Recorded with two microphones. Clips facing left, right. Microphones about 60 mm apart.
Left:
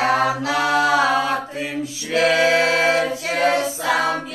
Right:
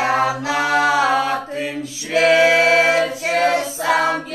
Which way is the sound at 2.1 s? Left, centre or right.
Right.